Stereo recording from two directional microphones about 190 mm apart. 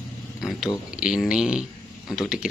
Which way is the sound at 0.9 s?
5° right (ahead or behind).